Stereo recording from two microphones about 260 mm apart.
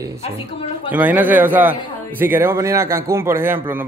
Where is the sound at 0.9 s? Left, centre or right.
Centre.